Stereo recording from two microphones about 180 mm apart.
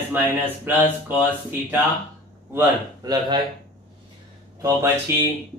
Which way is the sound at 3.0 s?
20° right (ahead or behind).